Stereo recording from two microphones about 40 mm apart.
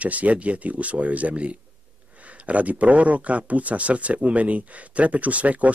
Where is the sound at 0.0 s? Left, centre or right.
Right.